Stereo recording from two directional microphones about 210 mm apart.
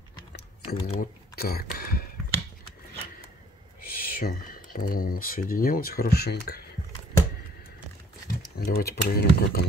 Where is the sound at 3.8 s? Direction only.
45° left (ahead or behind).